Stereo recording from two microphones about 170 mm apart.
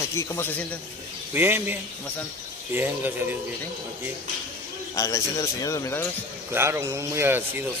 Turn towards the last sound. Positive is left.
turn(degrees=-15)  # may be behind; listen again after turning